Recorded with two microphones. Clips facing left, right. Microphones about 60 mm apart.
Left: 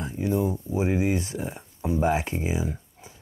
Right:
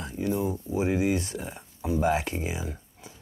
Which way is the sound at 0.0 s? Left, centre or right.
Left.